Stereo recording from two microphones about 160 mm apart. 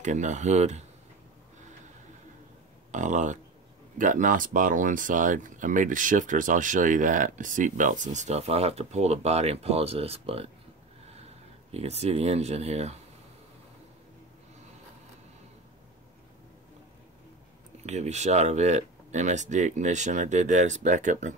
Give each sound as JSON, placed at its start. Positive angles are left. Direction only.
{"t": 0.0, "sound": "speech", "side_deg": -50}
{"t": 2.9, "sound": "speech", "side_deg": -50}
{"t": 11.7, "sound": "speech", "side_deg": -40}
{"t": 17.8, "sound": "speech", "side_deg": -45}